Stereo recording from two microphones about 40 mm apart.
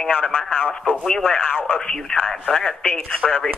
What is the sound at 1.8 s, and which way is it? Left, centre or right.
Speech, centre.